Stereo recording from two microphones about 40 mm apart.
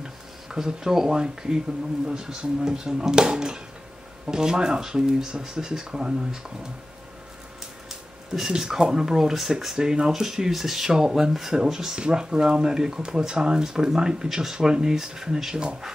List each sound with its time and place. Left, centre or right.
0.0 s a sound: centre
1.1 s speech: right
8.4 s speech: centre